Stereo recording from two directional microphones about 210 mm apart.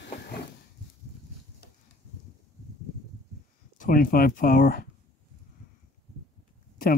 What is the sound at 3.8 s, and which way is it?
Speech, 40° left (ahead or behind).